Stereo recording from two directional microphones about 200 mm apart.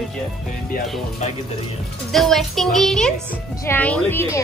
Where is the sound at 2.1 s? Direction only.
Centre (ahead or behind).